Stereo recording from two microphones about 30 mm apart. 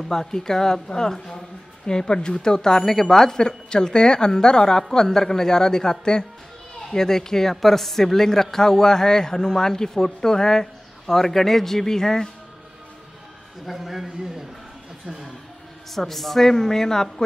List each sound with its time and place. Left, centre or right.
0.1 s a man's voice: centre
2.8 s a woman's voice: centre
13.7 s a man's voice: centre
15.9 s a man's voice: centre